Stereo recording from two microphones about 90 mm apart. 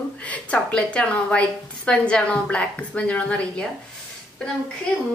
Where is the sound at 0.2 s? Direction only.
15° left (ahead or behind).